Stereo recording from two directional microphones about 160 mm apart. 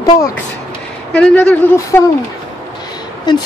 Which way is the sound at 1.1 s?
10° left (ahead or behind).